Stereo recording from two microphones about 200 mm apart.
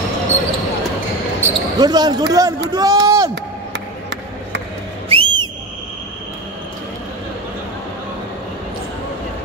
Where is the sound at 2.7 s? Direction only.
20° right (ahead or behind).